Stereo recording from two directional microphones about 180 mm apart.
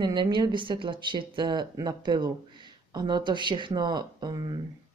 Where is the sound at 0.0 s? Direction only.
25° right (ahead or behind).